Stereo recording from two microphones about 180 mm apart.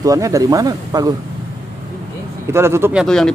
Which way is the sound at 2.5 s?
15° right (ahead or behind).